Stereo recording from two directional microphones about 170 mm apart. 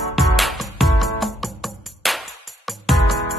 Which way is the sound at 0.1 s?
Centre (ahead or behind).